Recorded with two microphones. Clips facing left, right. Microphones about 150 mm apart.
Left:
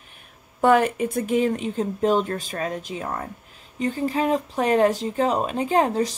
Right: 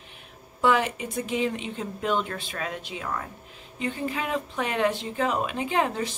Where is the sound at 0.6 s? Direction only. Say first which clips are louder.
Left 5 dB; 50° left (ahead or behind).